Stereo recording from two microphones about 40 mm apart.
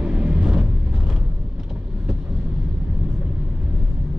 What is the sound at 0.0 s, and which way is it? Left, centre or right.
Vehicle, right.